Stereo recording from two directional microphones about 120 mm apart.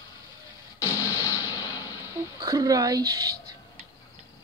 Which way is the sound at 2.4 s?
30° right (ahead or behind).